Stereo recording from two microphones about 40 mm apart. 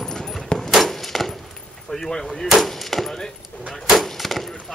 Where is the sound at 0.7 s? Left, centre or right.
Centre.